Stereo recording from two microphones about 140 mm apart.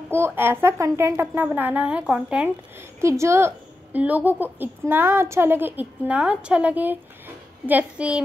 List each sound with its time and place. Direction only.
0.1 s a woman's voice: 15° right (ahead or behind)
3.0 s a woman's voice: 20° right (ahead or behind)